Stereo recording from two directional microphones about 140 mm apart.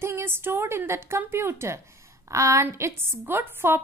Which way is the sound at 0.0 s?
15° right (ahead or behind).